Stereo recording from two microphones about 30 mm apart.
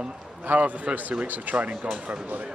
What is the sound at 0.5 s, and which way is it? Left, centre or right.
Speech, right.